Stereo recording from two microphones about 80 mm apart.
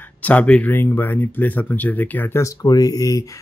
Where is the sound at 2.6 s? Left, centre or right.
Left.